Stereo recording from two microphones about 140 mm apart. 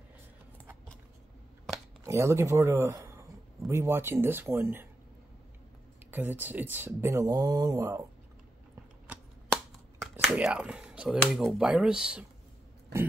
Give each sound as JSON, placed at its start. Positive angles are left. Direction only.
{"t": 2.0, "sound": "speech", "side_deg": -20}
{"t": 6.1, "sound": "speech", "side_deg": -15}
{"t": 10.3, "sound": "speech", "side_deg": -10}